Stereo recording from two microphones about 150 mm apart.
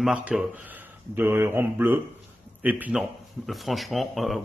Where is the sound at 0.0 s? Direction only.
5° right (ahead or behind).